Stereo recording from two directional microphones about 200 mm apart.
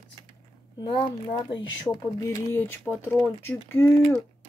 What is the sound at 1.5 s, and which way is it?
Speech, 15° left (ahead or behind).